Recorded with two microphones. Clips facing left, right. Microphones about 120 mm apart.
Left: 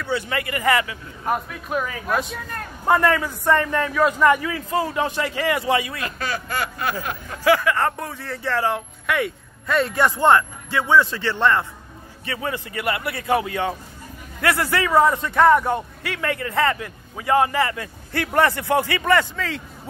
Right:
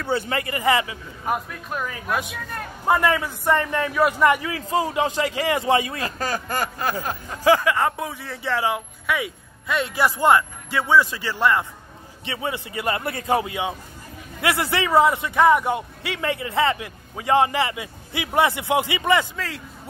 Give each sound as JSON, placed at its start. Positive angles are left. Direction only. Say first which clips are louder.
{"t": 0.0, "sound": "speech", "louder": "right 1 dB", "side_deg": -30}
{"t": 1.2, "sound": "a man's voice", "louder": "left 2 dB", "side_deg": 0}
{"t": 7.4, "sound": "speech", "louder": "even", "side_deg": -25}
{"t": 7.7, "sound": "a man's voice", "louder": "even", "side_deg": -15}
{"t": 12.8, "sound": "a man's voice", "louder": "even", "side_deg": -30}
{"t": 19.3, "sound": "speech", "louder": "left 3 dB", "side_deg": -5}